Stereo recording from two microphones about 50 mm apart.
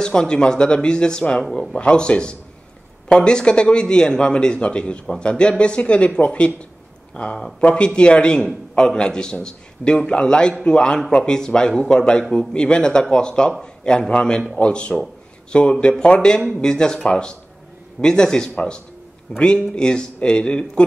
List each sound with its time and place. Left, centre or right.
0.0 s a man's voice: centre
1.8 s a man's voice: left